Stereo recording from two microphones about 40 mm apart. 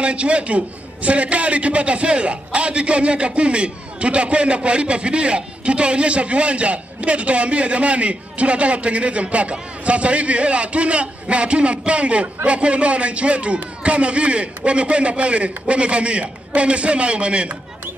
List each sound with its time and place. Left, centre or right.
0.0 s a man's voice: right